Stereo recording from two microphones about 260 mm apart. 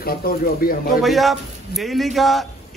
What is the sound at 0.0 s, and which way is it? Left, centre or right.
Speech, left.